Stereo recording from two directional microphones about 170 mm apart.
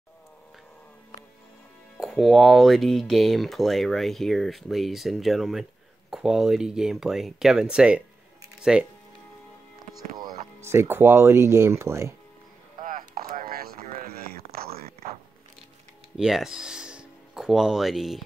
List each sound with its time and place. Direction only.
2.0 s speech: centre (ahead or behind)
10.6 s speech: 15° right (ahead or behind)
12.8 s a sound: 55° right (ahead or behind)
16.2 s speech: 5° right (ahead or behind)